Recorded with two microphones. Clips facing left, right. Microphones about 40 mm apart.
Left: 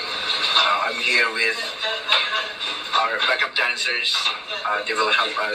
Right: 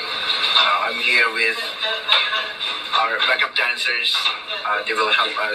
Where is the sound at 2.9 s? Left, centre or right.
Centre.